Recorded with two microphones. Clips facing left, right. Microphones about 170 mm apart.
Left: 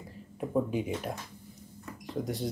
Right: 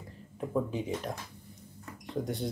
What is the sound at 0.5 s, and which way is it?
Speech, 10° left (ahead or behind).